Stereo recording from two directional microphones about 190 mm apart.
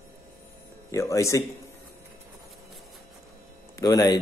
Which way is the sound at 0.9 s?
15° left (ahead or behind).